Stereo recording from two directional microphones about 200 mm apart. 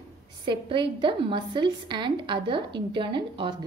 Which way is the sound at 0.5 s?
25° right (ahead or behind).